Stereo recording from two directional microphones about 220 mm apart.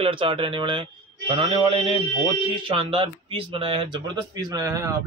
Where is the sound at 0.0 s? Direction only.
25° right (ahead or behind).